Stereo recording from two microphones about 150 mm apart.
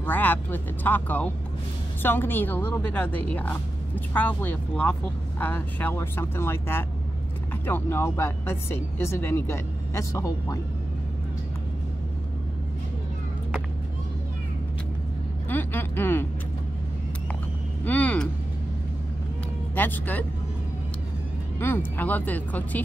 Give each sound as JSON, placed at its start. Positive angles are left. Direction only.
{"t": 0.0, "sound": "speech", "side_deg": 10}
{"t": 15.5, "sound": "a sound", "side_deg": 15}
{"t": 17.8, "sound": "vehicle", "side_deg": 10}
{"t": 19.7, "sound": "speech", "side_deg": 10}
{"t": 21.5, "sound": "speech", "side_deg": 15}